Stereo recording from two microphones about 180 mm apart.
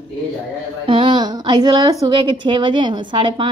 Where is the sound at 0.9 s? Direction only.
25° right (ahead or behind).